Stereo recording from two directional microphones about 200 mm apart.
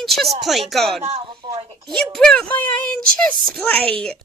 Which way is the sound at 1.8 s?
Centre (ahead or behind).